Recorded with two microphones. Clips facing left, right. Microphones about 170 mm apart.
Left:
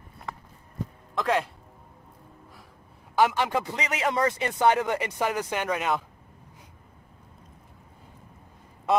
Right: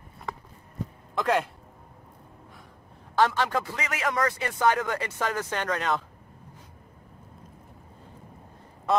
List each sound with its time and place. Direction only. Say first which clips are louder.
1.1 s speech: right 1 dB; centre (ahead or behind)
3.2 s speech: left 1 dB; 15° left (ahead or behind)